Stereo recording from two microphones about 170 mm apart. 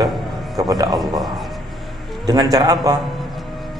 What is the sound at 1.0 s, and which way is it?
Speech, centre (ahead or behind).